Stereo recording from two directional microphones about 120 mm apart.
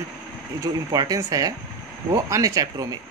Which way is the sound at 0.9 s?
30° right (ahead or behind).